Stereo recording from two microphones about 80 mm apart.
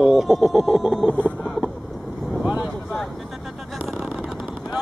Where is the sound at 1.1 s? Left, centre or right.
Centre.